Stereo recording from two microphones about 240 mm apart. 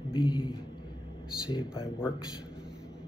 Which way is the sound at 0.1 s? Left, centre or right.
Centre.